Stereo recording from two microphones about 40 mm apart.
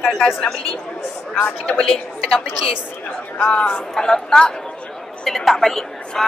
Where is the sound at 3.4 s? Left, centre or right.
Left.